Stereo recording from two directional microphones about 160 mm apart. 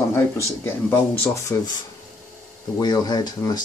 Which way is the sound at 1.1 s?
20° left (ahead or behind).